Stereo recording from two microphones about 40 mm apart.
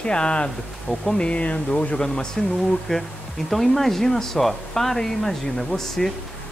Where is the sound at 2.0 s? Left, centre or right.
Centre.